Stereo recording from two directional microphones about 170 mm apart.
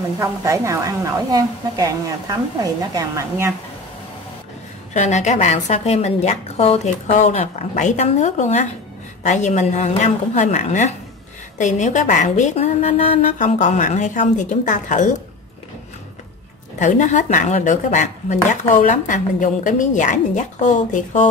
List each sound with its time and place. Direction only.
0.2 s a woman's voice: 20° right (ahead or behind)
4.9 s speech: 45° left (ahead or behind)
16.7 s speech: 45° left (ahead or behind)